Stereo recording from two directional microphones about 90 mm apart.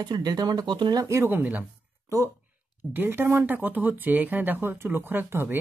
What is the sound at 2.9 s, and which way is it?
Speech, 20° right (ahead or behind).